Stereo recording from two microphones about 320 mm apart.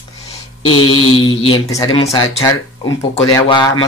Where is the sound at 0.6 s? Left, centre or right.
Centre.